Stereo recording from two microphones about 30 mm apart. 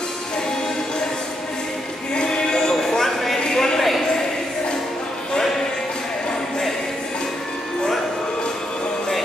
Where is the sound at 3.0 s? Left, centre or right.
Centre.